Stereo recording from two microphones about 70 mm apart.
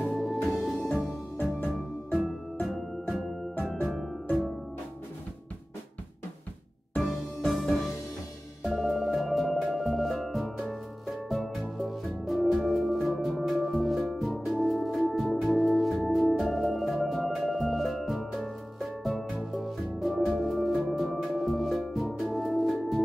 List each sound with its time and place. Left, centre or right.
0.0 s music: centre
1.4 s music: left
2.6 s music: centre
7.0 s music: centre